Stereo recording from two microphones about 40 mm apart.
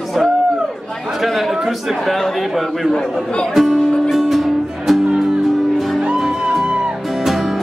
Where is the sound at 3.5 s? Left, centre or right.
Centre.